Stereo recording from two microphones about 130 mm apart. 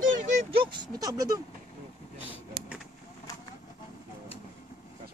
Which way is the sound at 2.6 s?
10° right (ahead or behind).